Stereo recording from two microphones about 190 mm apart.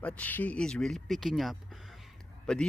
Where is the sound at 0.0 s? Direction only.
10° left (ahead or behind).